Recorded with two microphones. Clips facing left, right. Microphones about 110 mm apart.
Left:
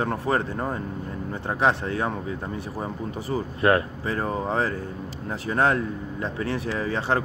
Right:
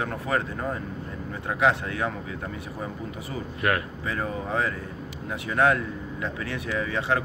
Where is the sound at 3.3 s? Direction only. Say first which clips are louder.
Left 6 dB; 30° left (ahead or behind).